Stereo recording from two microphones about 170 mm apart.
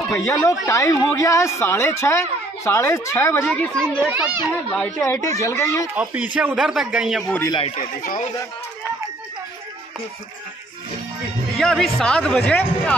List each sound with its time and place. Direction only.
0.2 s speech: 20° left (ahead or behind)
4.0 s a child's voice: 10° right (ahead or behind)
4.7 s speech: 10° left (ahead or behind)
5.9 s a man's voice: 10° right (ahead or behind)
7.7 s speech: 50° left (ahead or behind)
11.5 s a man's voice: centre (ahead or behind)